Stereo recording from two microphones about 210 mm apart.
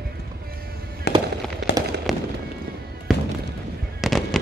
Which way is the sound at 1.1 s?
55° left (ahead or behind).